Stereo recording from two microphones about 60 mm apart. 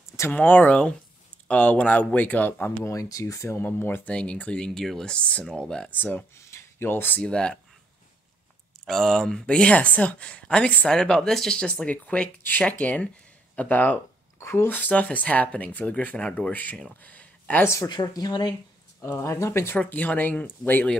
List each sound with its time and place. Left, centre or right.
0.3 s speech: left
2.8 s speech: left
3.6 s speech: left
4.1 s speech: centre
5.9 s speech: left
6.5 s a sound: left
7.2 s speech: centre
8.8 s speech: centre; by 13.9 s left
14.4 s speech: left; by 16.5 s centre
16.9 s a sound: left
17.6 s speech: left
19.2 s speech: left
19.9 s speech: left